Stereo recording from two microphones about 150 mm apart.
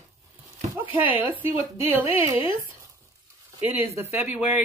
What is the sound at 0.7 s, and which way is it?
Speech, 10° right (ahead or behind).